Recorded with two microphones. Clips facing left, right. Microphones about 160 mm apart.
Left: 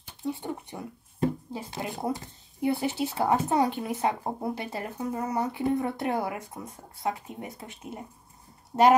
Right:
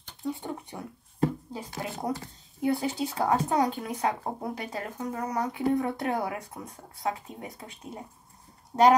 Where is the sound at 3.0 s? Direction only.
5° left (ahead or behind).